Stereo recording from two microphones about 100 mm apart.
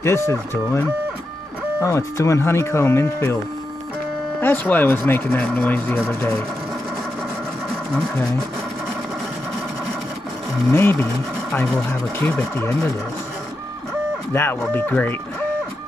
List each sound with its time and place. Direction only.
0.0 s speech: 25° left (ahead or behind)
4.4 s speech: 20° left (ahead or behind)
10.7 s speech: 25° left (ahead or behind)
12.5 s speech: 25° left (ahead or behind)
14.3 s speech: 20° left (ahead or behind)